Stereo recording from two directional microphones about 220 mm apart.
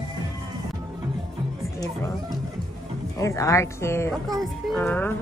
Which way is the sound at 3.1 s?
15° left (ahead or behind).